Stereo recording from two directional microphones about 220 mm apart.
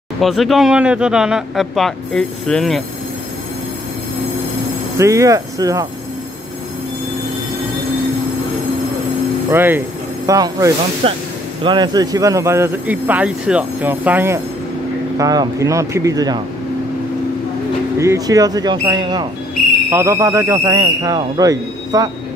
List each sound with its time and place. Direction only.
0.2 s speech: centre (ahead or behind)
4.9 s a man's voice: 15° right (ahead or behind)
9.5 s a man's voice: 10° right (ahead or behind)
17.9 s a man's voice: 15° right (ahead or behind)